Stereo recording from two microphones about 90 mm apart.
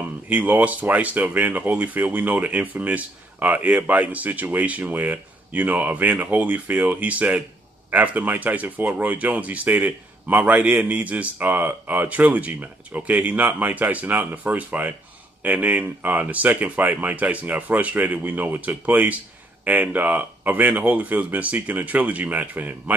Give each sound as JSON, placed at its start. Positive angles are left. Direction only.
{"t": 0.3, "sound": "speech", "side_deg": -15}